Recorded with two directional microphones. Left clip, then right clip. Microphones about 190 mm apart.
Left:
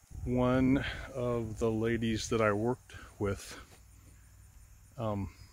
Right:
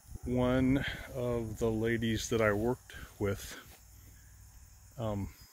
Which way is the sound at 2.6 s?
5° left (ahead or behind).